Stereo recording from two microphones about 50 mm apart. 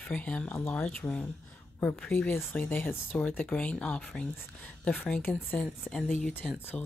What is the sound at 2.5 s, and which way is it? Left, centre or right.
Speech, left.